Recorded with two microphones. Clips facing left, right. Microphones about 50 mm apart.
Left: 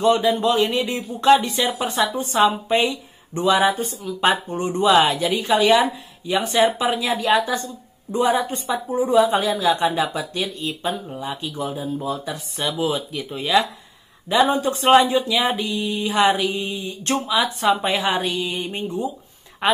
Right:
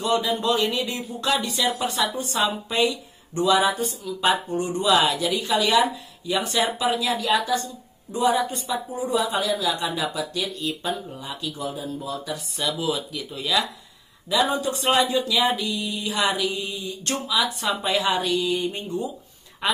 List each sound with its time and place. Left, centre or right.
0.0 s a woman's voice: left